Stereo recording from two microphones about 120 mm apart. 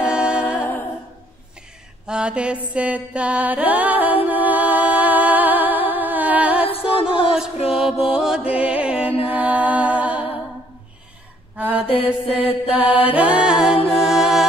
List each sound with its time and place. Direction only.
0.0 s music: 10° right (ahead or behind)
2.0 s mantra: 10° right (ahead or behind)
6.6 s music: 50° left (ahead or behind)
7.3 s music: 5° right (ahead or behind)
11.5 s mantra: 15° right (ahead or behind)
11.9 s mantra: 50° left (ahead or behind)
12.6 s mantra: 10° right (ahead or behind)
14.0 s music: 5° right (ahead or behind)